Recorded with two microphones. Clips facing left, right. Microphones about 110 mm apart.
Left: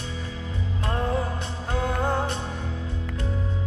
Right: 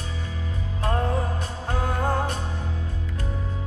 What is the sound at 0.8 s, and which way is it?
Music, 30° right (ahead or behind).